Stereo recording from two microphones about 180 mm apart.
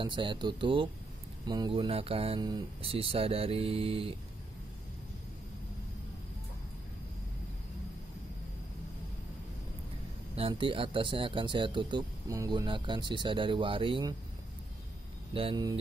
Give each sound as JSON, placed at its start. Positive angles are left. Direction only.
{"t": 0.0, "sound": "speech", "side_deg": -25}
{"t": 10.3, "sound": "speech", "side_deg": -30}
{"t": 15.3, "sound": "speech", "side_deg": -25}